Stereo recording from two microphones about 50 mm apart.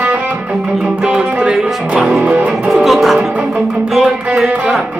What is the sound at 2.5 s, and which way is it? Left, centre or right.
Music, centre.